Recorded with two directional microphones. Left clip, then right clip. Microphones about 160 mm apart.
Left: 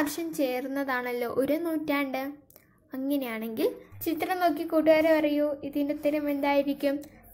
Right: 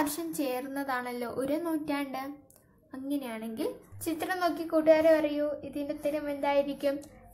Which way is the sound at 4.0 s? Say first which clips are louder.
Left 4 dB; 10° left (ahead or behind).